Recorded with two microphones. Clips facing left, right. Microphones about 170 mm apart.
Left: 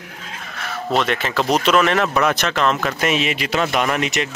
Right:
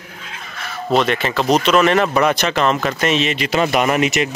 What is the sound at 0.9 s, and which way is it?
Speech, centre (ahead or behind).